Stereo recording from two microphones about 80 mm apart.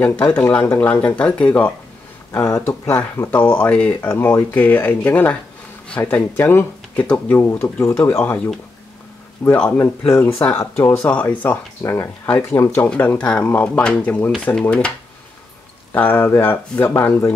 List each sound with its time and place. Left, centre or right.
0.0 s speech: centre
2.3 s speech: left; by 4.1 s centre
4.1 s speech: left
4.6 s speech: centre
7.4 s speech: left
9.7 s speech: left
11.0 s speech: centre
11.8 s speech: left
12.8 s speech: centre
15.9 s speech: left